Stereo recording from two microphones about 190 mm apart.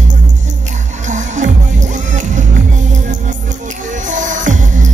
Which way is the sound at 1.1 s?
40° right (ahead or behind).